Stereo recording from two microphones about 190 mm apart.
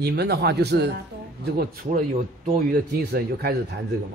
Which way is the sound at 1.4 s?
50° right (ahead or behind).